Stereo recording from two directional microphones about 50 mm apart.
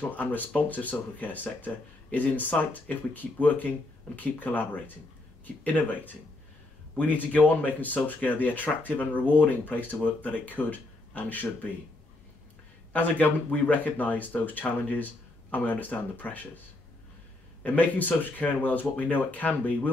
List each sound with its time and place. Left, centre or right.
0.0 s speech: left
12.9 s speech: left
17.6 s speech: left